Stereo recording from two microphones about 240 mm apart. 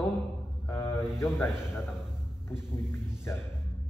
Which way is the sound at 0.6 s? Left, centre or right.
Centre.